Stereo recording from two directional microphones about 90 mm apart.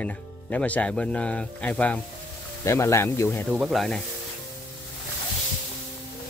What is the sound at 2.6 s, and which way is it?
Speech, 35° left (ahead or behind).